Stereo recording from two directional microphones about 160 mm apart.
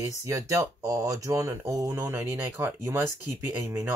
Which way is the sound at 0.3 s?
20° right (ahead or behind).